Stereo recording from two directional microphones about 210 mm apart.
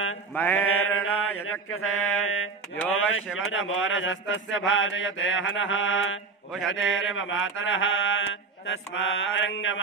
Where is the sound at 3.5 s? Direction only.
70° left (ahead or behind).